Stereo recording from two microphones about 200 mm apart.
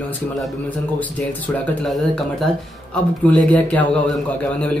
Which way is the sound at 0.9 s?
5° left (ahead or behind).